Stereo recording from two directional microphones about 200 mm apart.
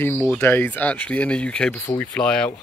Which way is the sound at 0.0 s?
10° left (ahead or behind).